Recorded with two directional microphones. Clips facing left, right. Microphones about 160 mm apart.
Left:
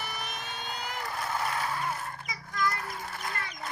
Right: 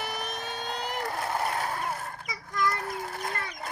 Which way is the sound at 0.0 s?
40° right (ahead or behind).